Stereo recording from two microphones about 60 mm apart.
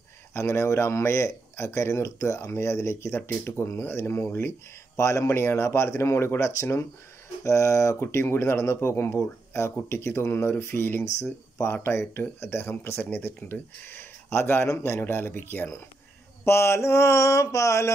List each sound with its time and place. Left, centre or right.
0.3 s speech: left
5.3 s speech: left
13.0 s speech: left
16.4 s mantra: left